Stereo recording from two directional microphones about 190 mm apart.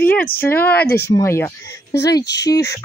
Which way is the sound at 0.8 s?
55° left (ahead or behind).